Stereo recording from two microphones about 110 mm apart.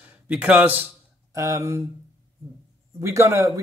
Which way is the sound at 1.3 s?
25° right (ahead or behind).